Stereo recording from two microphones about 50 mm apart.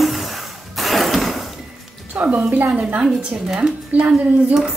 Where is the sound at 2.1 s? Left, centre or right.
Right.